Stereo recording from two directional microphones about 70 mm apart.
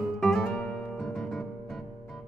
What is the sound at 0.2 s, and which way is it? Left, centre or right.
Music, centre.